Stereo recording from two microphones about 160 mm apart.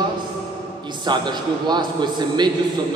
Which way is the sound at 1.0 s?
30° right (ahead or behind).